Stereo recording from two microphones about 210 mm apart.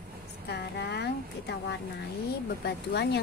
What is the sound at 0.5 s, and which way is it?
A woman's voice, 55° left (ahead or behind).